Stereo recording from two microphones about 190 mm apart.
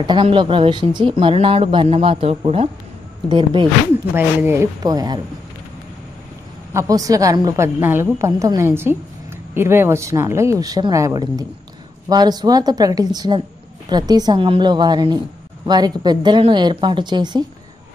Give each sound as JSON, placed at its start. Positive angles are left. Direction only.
{"t": 0.0, "sound": "a woman's voice", "side_deg": -25}
{"t": 4.1, "sound": "a woman's voice", "side_deg": -10}
{"t": 6.7, "sound": "a woman's voice", "side_deg": -15}